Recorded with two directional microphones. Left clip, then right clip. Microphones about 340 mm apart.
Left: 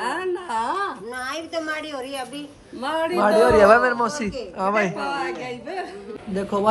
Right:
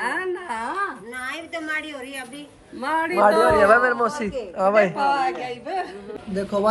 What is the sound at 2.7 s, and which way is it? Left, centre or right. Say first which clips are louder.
A man's voice: right 1 dB; centre.